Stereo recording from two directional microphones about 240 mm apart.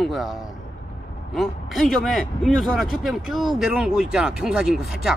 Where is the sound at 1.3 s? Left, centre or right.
Centre.